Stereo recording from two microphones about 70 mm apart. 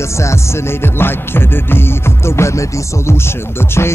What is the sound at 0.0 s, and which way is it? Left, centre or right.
Music, left.